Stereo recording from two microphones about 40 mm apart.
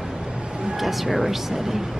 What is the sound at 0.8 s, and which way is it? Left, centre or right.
Speech, centre.